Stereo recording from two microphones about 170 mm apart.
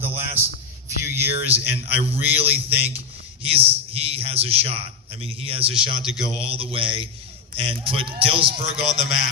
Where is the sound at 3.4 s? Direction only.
35° right (ahead or behind).